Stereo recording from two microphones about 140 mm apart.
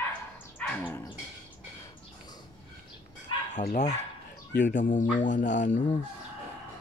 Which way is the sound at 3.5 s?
55° left (ahead or behind).